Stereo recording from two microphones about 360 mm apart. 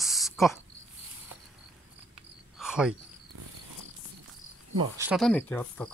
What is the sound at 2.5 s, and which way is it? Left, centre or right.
Cricket, centre.